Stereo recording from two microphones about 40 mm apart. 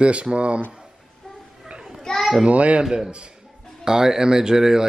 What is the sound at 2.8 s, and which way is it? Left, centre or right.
Speech, right.